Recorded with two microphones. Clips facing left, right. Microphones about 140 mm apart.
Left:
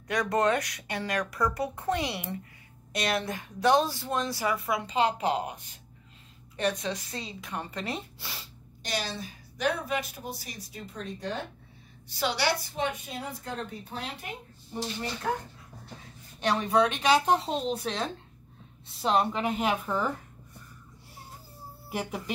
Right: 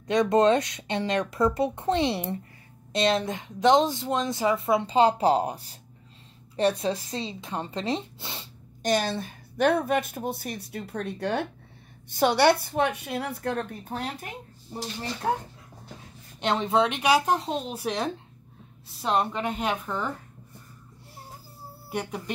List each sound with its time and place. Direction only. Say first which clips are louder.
0.0 s a woman's voice: right 6 dB; 25° right (ahead or behind)
8.8 s a woman's voice: right 8 dB; 50° right (ahead or behind); by 11.4 s 70° right (ahead or behind)
12.1 s a woman's voice: right 8 dB; 50° right (ahead or behind)
15.2 s a woman's voice: right 6 dB; 30° right (ahead or behind)
17.2 s a woman's voice: even; centre (ahead or behind)
17.8 s speech: right 4 dB; 15° right (ahead or behind)
18.9 s a woman's voice: even; centre (ahead or behind)
21.9 s a woman's voice: right 2 dB; 5° left (ahead or behind)